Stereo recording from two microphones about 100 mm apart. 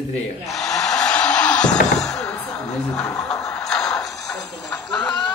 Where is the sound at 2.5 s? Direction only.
35° left (ahead or behind).